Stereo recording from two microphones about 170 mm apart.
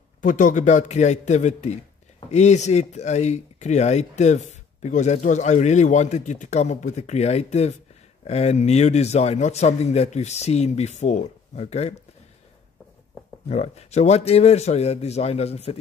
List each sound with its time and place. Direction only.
0.2 s a man's voice: 50° left (ahead or behind)
13.5 s speech: 40° left (ahead or behind)